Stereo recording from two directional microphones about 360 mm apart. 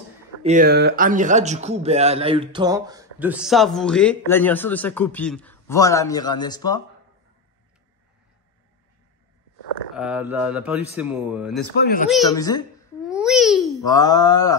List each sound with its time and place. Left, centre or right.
0.4 s a man's voice: right; by 6.8 s centre
9.9 s a man's voice: centre
11.8 s a man's voice: left
12.1 s groan: centre
13.0 s babbling: centre
13.8 s groan: centre